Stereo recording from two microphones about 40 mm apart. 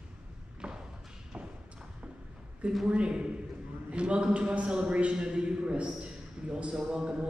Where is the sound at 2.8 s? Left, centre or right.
Right.